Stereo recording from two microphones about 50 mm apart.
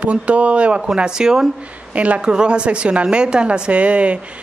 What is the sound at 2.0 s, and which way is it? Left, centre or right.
Speech, right.